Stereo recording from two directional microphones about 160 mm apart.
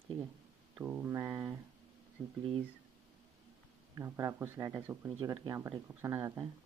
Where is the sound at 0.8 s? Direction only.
10° right (ahead or behind).